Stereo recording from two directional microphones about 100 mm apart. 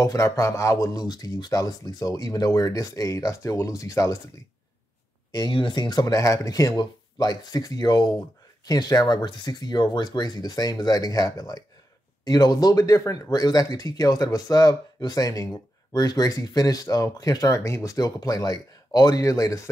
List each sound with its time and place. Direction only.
0.0 s speech: 30° left (ahead or behind)
5.5 s speech: 55° left (ahead or behind); by 19.7 s 35° left (ahead or behind)